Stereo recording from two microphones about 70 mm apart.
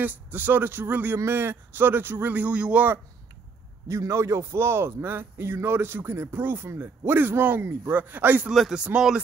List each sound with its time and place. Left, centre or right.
0.0 s speech: right
3.9 s a man's voice: right
8.7 s speech: centre